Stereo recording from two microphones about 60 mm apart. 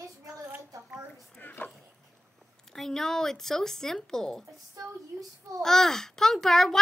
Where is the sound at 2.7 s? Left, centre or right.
Centre.